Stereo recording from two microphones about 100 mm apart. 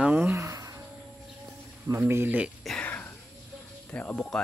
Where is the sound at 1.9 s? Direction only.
25° right (ahead or behind).